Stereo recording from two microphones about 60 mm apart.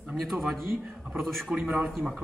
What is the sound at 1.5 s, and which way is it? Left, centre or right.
Speech, right.